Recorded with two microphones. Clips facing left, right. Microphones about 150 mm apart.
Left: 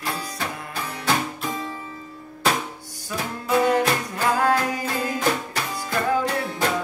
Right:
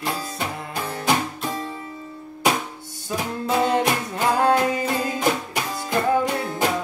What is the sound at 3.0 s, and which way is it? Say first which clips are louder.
Music: right 3 dB; 25° right (ahead or behind).